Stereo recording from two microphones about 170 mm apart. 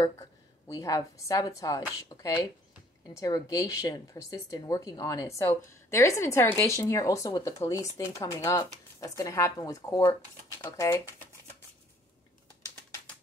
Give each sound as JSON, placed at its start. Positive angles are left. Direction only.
{"t": 0.0, "sound": "speech", "side_deg": 20}